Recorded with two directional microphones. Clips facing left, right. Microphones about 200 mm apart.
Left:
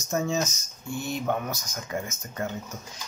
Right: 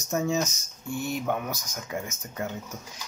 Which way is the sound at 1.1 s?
5° right (ahead or behind).